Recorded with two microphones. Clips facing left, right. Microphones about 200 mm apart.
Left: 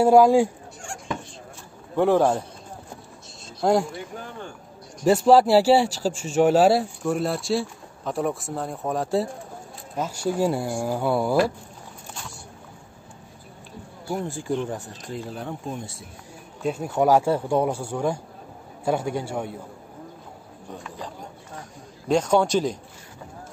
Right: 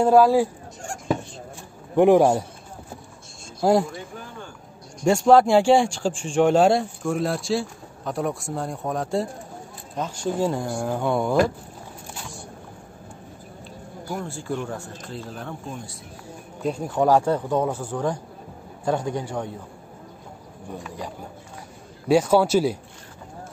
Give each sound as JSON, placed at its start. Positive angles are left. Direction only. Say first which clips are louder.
{"t": 0.0, "sound": "speech", "louder": "left 1 dB", "side_deg": 15}
{"t": 2.0, "sound": "a man's voice", "louder": "right 4 dB", "side_deg": -15}
{"t": 3.6, "sound": "a man's voice", "louder": "right 2 dB", "side_deg": -5}
{"t": 5.0, "sound": "a man's voice", "louder": "even", "side_deg": 5}
{"t": 14.1, "sound": "speech", "louder": "left 3 dB", "side_deg": 15}
{"t": 15.7, "sound": "speech", "louder": "left 2 dB", "side_deg": 25}
{"t": 16.6, "sound": "speech", "louder": "even", "side_deg": 5}
{"t": 22.0, "sound": "a man's voice", "louder": "right 2 dB", "side_deg": -10}